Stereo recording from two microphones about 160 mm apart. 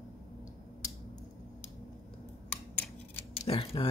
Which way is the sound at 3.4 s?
35° left (ahead or behind).